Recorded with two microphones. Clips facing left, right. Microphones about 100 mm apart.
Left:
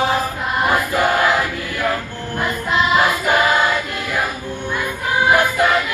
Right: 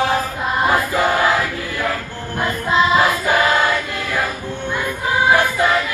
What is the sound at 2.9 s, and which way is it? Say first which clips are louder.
Choir: even; 20° left (ahead or behind).